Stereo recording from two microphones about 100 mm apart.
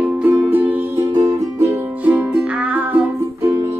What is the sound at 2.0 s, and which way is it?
Music, 15° right (ahead or behind).